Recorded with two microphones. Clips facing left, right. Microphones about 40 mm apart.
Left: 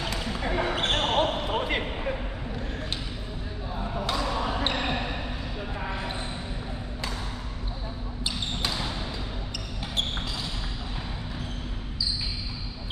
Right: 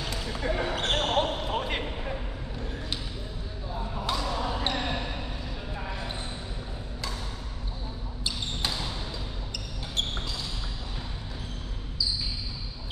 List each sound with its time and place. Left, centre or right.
0.1 s basketball bounce: centre
4.2 s basketball bounce: centre